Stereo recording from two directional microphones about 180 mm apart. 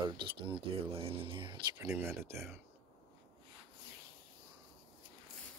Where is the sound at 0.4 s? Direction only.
30° right (ahead or behind).